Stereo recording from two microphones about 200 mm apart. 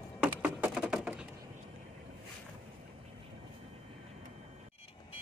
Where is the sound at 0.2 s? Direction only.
10° right (ahead or behind).